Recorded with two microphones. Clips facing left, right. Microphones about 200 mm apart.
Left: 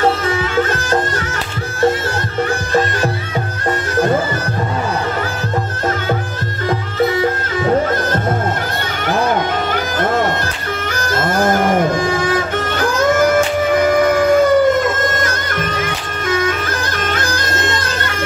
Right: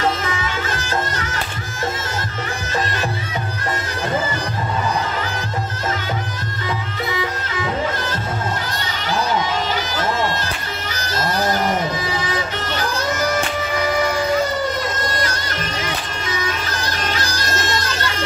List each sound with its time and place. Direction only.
0.0 s music: 35° left (ahead or behind)
0.6 s music: 50° left (ahead or behind)
7.2 s music: 50° left (ahead or behind)
9.0 s bagpipes: 55° left (ahead or behind)
10.9 s music: 50° left (ahead or behind)
16.3 s bagpipes: 50° left (ahead or behind)